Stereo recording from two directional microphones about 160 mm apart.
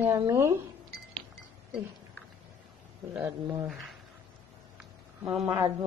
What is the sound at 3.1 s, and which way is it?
Speech, 15° right (ahead or behind).